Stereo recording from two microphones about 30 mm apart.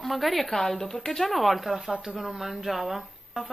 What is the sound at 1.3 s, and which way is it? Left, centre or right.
Speech, centre.